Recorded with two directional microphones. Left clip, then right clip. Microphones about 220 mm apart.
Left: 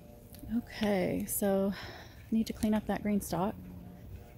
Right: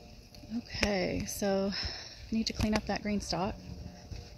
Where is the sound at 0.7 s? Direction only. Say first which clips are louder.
Right 1 dB; 15° left (ahead or behind).